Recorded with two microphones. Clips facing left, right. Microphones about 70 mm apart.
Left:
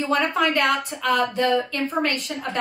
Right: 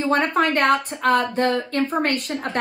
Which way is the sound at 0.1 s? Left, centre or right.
Right.